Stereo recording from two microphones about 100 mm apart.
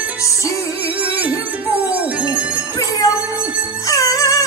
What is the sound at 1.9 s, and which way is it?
Music, 15° right (ahead or behind).